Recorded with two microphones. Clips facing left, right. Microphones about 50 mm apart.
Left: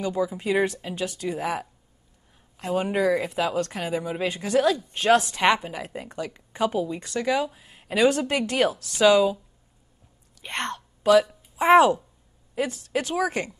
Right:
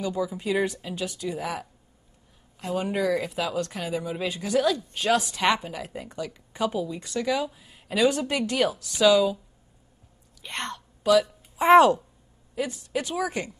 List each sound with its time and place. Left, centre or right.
0.0 s speech: left
1.3 s speech: left
4.3 s speech: left
7.5 s a sound: left
8.2 s speech: left
10.4 s a sound: left
11.5 s speech: left